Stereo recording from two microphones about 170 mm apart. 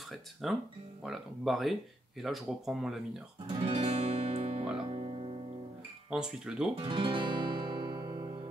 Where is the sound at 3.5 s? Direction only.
35° right (ahead or behind).